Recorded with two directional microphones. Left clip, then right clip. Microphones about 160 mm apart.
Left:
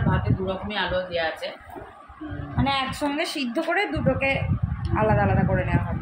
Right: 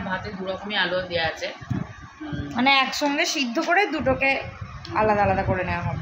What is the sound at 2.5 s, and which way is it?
Speech, 50° right (ahead or behind).